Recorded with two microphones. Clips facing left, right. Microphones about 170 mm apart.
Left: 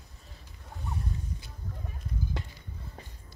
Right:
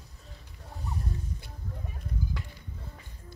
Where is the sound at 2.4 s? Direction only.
25° left (ahead or behind).